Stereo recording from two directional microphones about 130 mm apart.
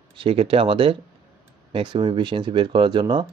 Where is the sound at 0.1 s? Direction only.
45° right (ahead or behind).